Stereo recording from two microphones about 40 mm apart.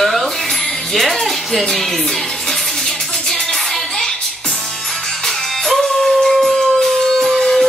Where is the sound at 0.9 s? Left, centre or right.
Centre.